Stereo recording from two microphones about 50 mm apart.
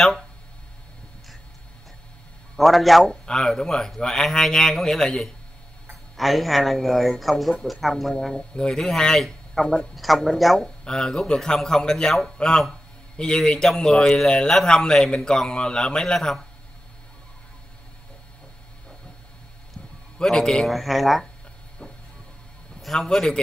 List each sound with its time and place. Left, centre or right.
2.5 s a man's voice: centre
3.3 s speech: centre
6.1 s a man's voice: centre
8.4 s a man's voice: centre
10.8 s speech: centre
20.2 s speech: centre
20.6 s a man's voice: centre
22.9 s speech: centre